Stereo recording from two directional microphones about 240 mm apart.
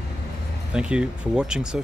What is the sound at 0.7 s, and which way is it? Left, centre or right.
Speech, centre.